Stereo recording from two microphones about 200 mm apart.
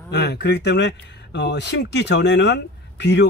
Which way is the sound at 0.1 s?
55° left (ahead or behind).